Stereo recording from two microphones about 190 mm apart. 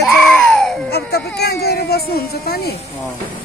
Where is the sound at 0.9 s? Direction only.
55° left (ahead or behind).